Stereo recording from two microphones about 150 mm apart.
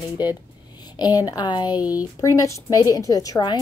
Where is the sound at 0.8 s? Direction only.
25° left (ahead or behind).